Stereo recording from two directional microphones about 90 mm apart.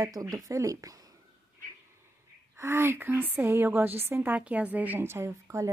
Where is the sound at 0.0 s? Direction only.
40° right (ahead or behind).